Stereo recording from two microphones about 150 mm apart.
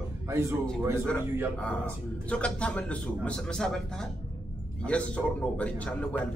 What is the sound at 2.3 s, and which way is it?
A man's voice, 5° left (ahead or behind).